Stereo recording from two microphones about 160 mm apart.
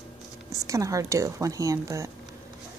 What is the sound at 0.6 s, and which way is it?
Speech, 20° right (ahead or behind).